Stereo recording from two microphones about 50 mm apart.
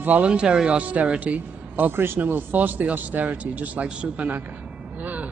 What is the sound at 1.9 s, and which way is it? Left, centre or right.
Speech, right.